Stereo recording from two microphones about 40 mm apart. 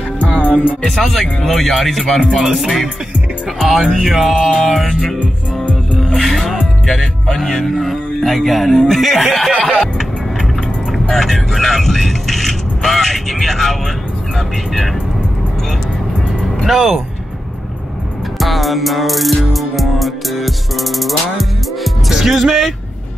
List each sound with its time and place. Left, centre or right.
0.4 s music: left
0.8 s music: centre
6.9 s speech: centre
7.7 s music: centre
11.1 s vehicle: centre
16.6 s music: centre
18.4 s music: centre
22.1 s speech: centre